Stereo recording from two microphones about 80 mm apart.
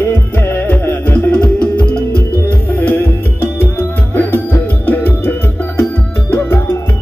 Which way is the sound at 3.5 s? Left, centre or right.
Left.